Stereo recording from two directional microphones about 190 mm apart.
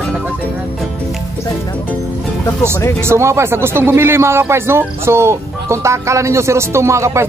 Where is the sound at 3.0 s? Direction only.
15° right (ahead or behind).